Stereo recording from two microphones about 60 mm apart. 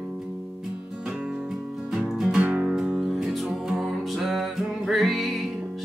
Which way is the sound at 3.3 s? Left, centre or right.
Centre.